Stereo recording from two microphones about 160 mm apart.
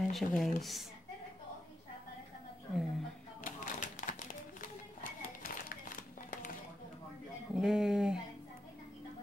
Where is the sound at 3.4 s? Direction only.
55° left (ahead or behind).